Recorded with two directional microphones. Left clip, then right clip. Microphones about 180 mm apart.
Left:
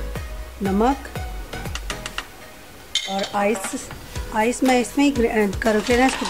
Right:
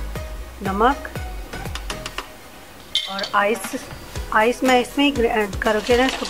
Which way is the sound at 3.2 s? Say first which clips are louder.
Right 3 dB; 25° left (ahead or behind).